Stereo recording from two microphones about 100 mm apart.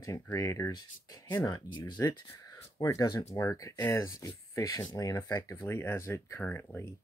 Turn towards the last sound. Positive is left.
turn(degrees=20)  # may be behind; listen again after turning